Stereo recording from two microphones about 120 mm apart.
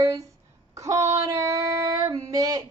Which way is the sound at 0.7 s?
25° right (ahead or behind).